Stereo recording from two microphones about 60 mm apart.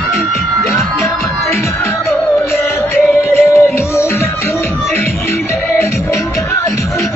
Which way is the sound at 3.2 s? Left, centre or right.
Left.